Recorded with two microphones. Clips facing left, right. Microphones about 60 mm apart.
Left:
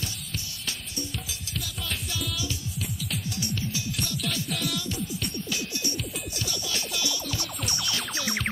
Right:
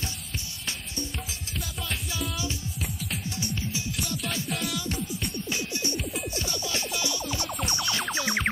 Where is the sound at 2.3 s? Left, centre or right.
Right.